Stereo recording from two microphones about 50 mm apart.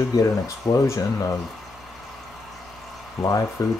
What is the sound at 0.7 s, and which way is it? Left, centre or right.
Speech, left.